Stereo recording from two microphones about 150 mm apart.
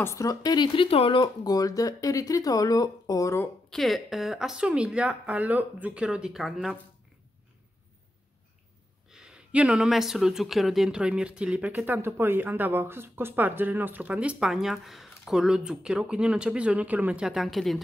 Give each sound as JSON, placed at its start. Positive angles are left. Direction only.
{"t": 0.0, "sound": "speech", "side_deg": 20}
{"t": 3.7, "sound": "speech", "side_deg": 0}
{"t": 9.1, "sound": "speech", "side_deg": -5}